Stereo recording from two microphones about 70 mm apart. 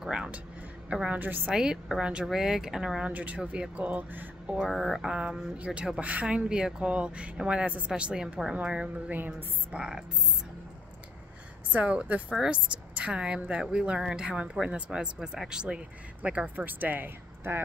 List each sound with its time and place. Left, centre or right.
0.0 s music: centre
0.8 s speech: centre
1.2 s speech: right
1.5 s speech: centre
3.1 s speech: right
4.6 s a sound: centre
5.8 s speech: centre
9.1 s speech: right
9.8 s speech: centre
11.7 s speech: centre